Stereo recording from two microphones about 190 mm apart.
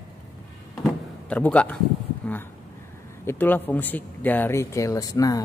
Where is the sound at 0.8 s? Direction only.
5° left (ahead or behind).